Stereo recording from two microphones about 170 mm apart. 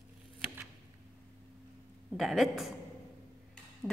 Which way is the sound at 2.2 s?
Centre (ahead or behind).